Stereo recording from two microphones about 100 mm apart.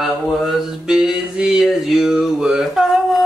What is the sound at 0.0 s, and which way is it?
Mantra, centre (ahead or behind).